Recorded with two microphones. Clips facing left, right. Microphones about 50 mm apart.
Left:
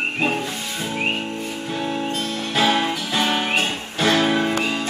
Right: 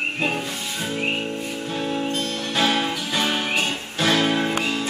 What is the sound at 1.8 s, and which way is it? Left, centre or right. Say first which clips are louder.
Music: even; centre.